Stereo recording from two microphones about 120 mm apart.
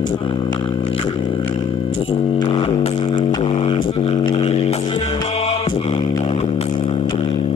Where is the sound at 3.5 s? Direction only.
55° left (ahead or behind).